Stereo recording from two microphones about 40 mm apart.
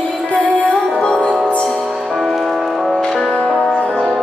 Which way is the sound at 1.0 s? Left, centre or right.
Left.